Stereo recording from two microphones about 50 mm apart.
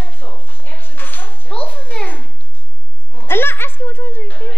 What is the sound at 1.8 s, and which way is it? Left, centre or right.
Babbling, left.